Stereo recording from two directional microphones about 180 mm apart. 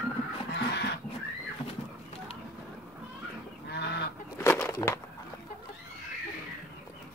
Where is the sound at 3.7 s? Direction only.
70° left (ahead or behind).